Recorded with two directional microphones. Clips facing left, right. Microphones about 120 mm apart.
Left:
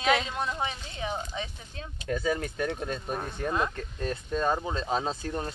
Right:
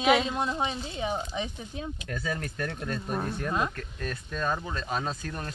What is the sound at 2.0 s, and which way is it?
Speech, 20° left (ahead or behind).